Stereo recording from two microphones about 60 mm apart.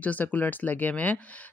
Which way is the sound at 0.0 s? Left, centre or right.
Left.